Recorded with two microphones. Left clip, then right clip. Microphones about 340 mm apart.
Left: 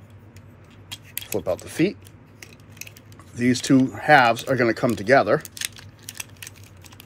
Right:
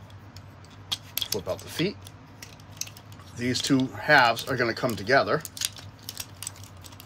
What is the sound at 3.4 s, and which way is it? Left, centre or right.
Speech, left.